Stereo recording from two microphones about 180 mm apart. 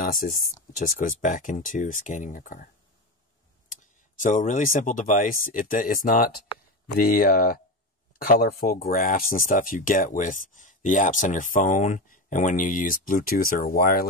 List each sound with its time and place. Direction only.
0.0 s speech: 50° left (ahead or behind)